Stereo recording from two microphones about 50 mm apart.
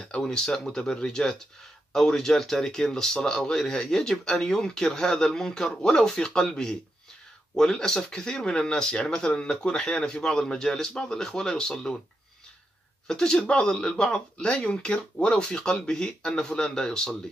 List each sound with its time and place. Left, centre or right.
0.1 s speech: centre
13.0 s speech: centre